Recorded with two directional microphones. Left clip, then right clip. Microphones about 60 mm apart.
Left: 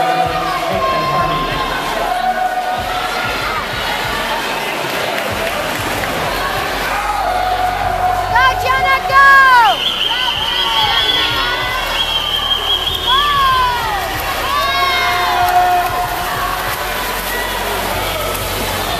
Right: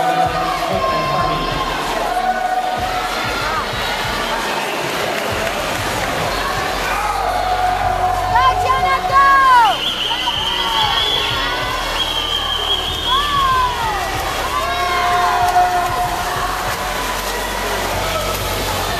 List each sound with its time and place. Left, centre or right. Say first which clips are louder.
8.4 s vehicle: left 1 dB; left